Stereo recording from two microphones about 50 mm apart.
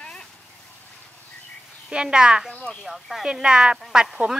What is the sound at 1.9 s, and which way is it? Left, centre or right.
Speech, centre.